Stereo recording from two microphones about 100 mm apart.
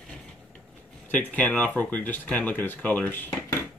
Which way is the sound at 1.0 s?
15° left (ahead or behind).